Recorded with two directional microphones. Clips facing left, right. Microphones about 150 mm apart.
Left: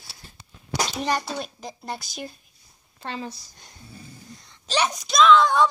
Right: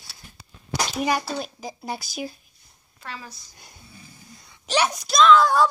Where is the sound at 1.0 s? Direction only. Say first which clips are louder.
Right 4 dB; 10° right (ahead or behind).